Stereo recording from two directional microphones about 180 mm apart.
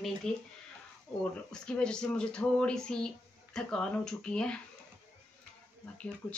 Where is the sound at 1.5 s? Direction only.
5° left (ahead or behind).